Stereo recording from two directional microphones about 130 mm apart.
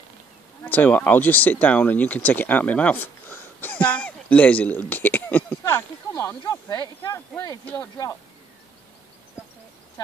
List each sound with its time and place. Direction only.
0.7 s speech: 10° left (ahead or behind); by 8.2 s 25° left (ahead or behind)